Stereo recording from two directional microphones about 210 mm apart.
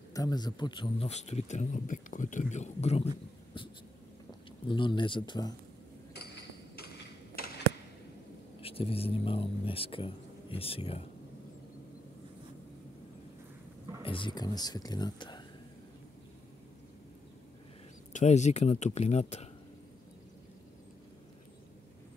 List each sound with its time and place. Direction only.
0.1 s speech: 15° left (ahead or behind)
3.6 s a sound: 25° left (ahead or behind)
4.6 s speech: 25° left (ahead or behind)
8.5 s speech: 25° left (ahead or behind)
14.0 s speech: 25° left (ahead or behind)
18.1 s speech: 35° left (ahead or behind)